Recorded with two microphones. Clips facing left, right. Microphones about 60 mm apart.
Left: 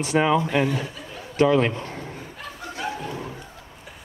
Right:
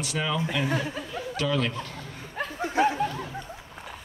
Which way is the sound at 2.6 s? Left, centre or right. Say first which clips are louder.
Right 8 dB; right.